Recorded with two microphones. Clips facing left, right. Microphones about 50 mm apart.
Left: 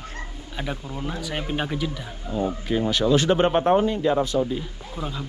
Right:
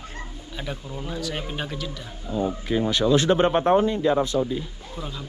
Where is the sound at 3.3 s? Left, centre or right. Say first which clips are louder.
Even; left.